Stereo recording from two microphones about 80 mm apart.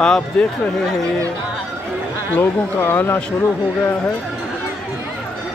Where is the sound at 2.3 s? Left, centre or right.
Left.